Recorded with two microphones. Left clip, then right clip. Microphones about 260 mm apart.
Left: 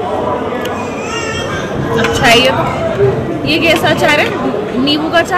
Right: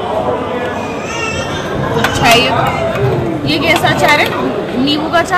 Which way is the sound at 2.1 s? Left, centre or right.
Centre.